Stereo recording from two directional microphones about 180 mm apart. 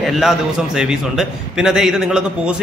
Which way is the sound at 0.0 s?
Centre (ahead or behind).